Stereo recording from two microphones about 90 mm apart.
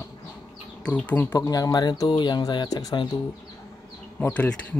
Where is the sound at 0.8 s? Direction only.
15° left (ahead or behind).